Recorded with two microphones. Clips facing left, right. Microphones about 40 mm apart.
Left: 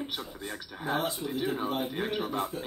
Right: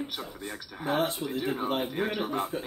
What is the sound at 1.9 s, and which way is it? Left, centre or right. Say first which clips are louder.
Speech: right 2 dB; centre.